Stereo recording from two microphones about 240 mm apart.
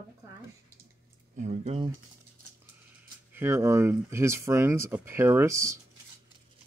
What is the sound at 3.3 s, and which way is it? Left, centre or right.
Speech, centre.